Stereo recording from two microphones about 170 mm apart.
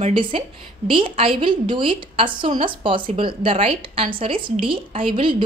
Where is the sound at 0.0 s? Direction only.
30° right (ahead or behind).